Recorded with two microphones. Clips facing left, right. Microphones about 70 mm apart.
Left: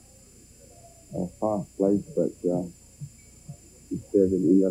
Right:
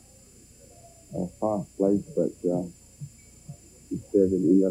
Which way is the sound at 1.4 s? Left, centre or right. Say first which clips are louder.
Even; centre.